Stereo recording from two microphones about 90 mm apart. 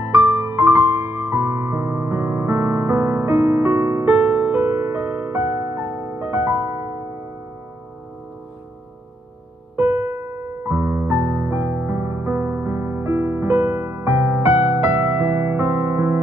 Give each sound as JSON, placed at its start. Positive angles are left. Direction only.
{"t": 0.1, "sound": "music", "side_deg": -25}
{"t": 9.8, "sound": "piano", "side_deg": -25}